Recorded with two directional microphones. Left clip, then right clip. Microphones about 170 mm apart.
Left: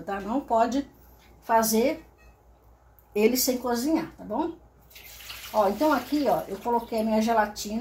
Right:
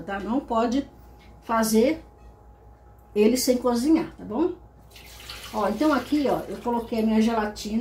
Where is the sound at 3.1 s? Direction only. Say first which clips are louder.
Right 2 dB; 35° left (ahead or behind).